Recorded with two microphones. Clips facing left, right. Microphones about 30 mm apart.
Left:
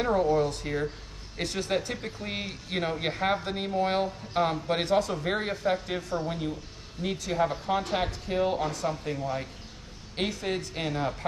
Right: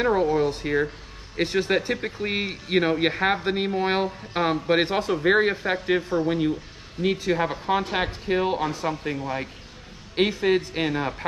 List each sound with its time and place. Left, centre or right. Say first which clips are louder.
0.0 s speech: right 3 dB; right